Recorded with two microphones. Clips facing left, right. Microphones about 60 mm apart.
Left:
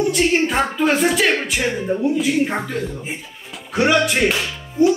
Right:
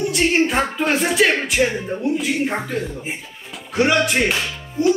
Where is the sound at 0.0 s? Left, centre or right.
Centre.